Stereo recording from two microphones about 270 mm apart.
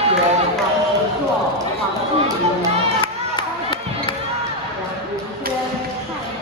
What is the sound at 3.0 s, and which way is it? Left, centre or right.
Crowd, centre.